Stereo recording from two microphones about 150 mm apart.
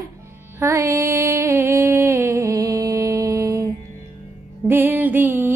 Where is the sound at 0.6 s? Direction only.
20° right (ahead or behind).